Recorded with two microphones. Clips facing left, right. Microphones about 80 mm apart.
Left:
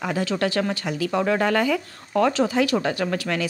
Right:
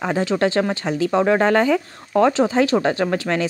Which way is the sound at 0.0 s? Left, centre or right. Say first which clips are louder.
Right 4 dB; right.